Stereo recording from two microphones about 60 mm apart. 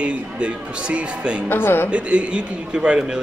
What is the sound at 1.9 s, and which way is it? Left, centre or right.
A man's voice, centre.